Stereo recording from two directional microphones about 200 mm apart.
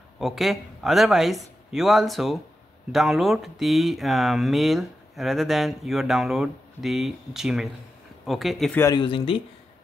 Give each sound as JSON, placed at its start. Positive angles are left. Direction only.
{"t": 0.2, "sound": "speech", "side_deg": 0}
{"t": 8.8, "sound": "speech", "side_deg": 25}